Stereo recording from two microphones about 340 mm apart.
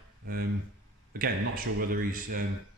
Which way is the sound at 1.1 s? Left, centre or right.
Right.